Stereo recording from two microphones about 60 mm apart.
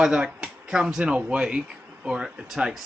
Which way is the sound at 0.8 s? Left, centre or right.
Centre.